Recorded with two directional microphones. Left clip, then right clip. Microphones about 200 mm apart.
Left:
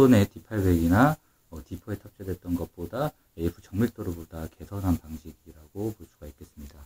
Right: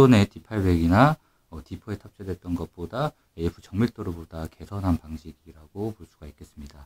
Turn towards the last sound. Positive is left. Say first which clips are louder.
# even
turn(degrees=-25)  # may be behind; listen again after turning